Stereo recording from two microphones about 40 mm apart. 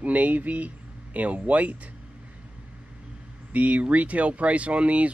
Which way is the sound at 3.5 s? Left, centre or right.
Right.